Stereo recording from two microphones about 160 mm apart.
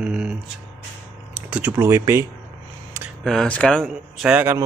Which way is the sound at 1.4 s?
5° right (ahead or behind).